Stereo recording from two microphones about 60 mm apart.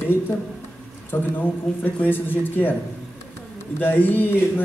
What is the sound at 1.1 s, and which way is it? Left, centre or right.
A man's voice, left.